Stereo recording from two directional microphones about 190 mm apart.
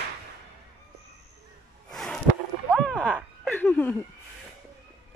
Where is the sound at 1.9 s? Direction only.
Centre (ahead or behind).